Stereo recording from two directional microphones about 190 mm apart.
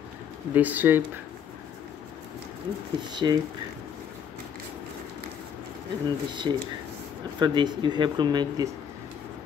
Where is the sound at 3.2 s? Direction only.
20° right (ahead or behind).